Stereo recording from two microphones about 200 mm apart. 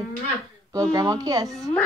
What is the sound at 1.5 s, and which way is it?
Speech, centre (ahead or behind).